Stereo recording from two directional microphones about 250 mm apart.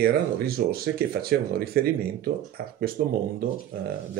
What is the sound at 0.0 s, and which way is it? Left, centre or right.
Speech, right.